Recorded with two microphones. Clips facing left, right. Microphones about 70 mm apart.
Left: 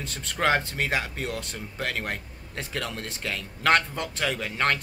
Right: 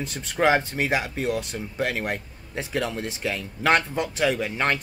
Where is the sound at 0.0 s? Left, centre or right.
Centre.